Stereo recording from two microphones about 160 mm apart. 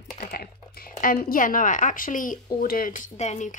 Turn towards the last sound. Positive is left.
turn(degrees=50)  # may be behind; listen again after turning